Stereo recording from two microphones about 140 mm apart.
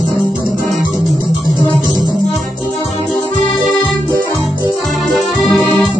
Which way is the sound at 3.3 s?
60° right (ahead or behind).